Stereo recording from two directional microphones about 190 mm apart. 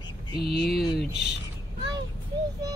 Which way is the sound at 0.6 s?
Centre (ahead or behind).